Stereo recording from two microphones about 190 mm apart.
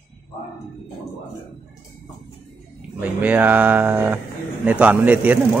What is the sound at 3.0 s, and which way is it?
Speech, 10° right (ahead or behind).